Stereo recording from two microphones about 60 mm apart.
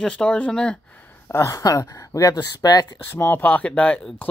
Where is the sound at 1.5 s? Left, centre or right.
Left.